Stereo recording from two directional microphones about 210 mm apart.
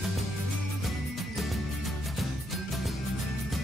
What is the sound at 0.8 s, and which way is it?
Music, centre (ahead or behind).